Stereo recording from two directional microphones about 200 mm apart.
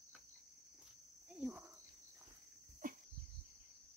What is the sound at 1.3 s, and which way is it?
Cricket, 5° right (ahead or behind).